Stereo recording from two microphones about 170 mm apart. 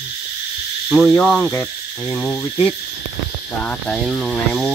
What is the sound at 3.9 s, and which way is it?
Speech, centre (ahead or behind).